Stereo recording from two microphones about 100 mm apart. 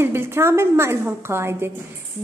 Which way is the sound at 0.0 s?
25° right (ahead or behind).